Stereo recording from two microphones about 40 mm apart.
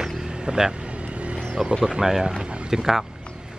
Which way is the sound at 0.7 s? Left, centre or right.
Right.